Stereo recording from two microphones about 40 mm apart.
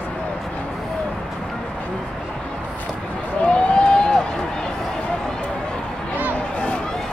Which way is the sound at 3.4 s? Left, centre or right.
Left.